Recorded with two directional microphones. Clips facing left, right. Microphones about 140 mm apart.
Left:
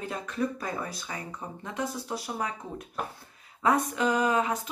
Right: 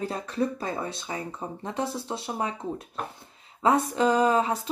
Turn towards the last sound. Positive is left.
turn(degrees=-30)  # may be behind; listen again after turning